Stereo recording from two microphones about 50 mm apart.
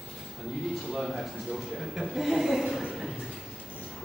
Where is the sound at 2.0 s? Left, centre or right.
Centre.